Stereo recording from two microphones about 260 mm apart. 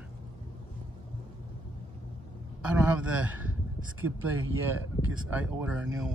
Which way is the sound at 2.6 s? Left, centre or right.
Centre.